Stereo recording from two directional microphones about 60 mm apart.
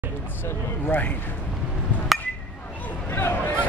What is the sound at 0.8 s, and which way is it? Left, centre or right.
Speech, left.